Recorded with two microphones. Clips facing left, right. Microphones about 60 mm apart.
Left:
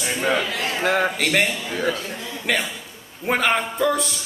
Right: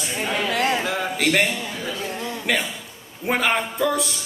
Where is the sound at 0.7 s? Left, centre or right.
Left.